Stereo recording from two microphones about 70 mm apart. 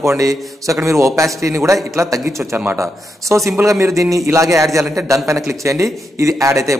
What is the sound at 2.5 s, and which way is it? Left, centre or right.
Speech, right.